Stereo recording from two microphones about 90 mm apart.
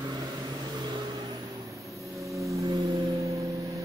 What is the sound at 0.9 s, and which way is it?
Vehicle, 55° right (ahead or behind).